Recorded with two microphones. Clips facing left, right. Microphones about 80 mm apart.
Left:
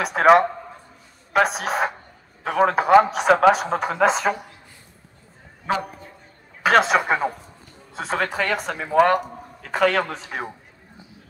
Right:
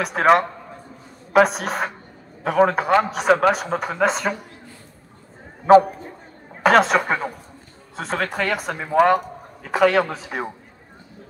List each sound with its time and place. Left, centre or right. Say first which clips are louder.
0.0 s speech: left 2 dB; centre
5.7 s a sound: right 13 dB; right
6.6 s speech: right 2 dB; centre